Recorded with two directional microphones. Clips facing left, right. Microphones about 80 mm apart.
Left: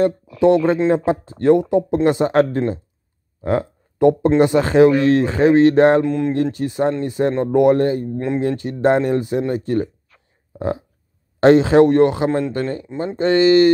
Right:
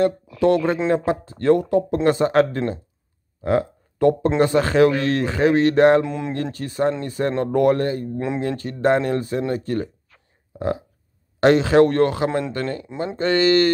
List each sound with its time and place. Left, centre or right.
0.0 s speech: left
3.4 s a sound: left
4.4 s speech: left
6.0 s speech: centre
6.3 s speech: left
8.1 s speech: centre
8.4 s speech: left
11.3 s speech: left